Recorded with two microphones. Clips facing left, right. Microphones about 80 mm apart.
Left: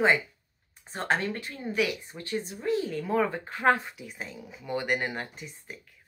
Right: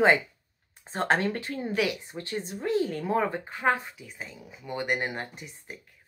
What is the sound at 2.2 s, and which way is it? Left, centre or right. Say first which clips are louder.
Speech: left 1 dB; right.